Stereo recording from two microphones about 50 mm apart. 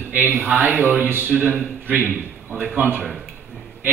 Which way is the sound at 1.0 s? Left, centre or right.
Right.